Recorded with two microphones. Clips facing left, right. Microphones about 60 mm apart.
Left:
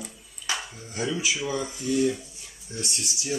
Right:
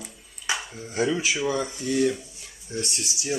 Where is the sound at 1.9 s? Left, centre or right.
Right.